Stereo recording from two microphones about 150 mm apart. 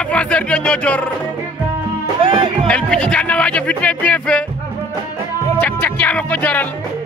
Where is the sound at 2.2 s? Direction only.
35° right (ahead or behind).